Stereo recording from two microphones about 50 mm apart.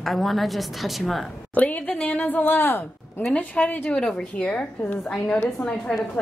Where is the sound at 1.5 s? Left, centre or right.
Left.